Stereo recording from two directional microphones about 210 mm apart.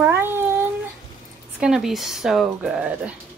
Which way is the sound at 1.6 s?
Centre (ahead or behind).